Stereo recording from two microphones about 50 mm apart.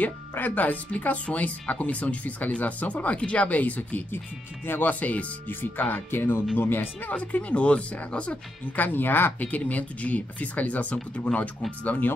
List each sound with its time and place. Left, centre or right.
0.3 s speech: left
7.2 s speech: left
8.7 s speech: left
9.5 s speech: left